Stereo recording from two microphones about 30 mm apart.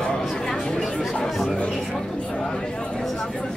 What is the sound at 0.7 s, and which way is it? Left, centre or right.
Chatter, left.